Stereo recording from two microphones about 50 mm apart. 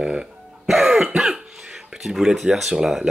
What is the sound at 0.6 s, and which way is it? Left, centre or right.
Cough, centre.